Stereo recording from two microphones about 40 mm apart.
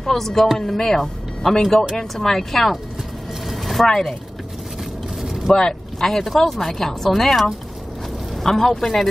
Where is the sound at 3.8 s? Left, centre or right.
Centre.